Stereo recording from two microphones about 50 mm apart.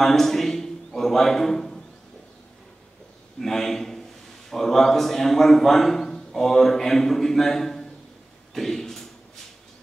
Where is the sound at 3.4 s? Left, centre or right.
Centre.